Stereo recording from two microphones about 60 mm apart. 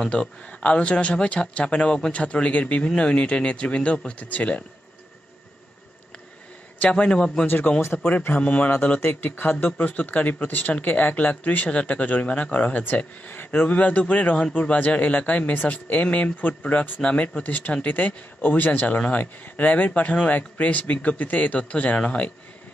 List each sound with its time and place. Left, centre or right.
0.0 s speech: centre
6.8 s a man's voice: centre
7.4 s speech: left
9.0 s speech: left